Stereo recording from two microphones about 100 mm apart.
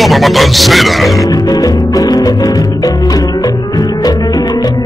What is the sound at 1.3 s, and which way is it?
Music, 40° left (ahead or behind).